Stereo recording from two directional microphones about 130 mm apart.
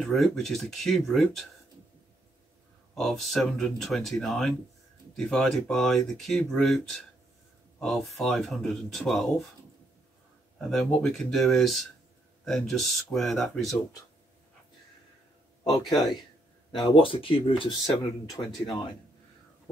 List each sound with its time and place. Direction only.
0.0 s speech: centre (ahead or behind)
2.9 s speech: centre (ahead or behind)
10.6 s speech: centre (ahead or behind)
15.8 s speech: centre (ahead or behind)
16.9 s speech: 45° left (ahead or behind)
18.4 s speech: 30° left (ahead or behind)